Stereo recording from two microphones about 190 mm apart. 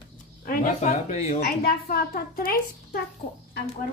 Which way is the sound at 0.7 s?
35° left (ahead or behind).